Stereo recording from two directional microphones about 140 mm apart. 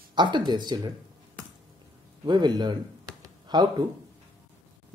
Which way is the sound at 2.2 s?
30° right (ahead or behind).